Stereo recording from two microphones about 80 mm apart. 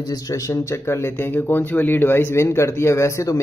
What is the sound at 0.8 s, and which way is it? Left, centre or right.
Speech, left.